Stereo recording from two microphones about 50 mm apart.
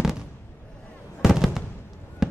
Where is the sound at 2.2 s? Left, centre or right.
Centre.